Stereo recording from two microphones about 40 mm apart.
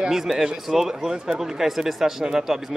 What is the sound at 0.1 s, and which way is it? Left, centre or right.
Speech, centre.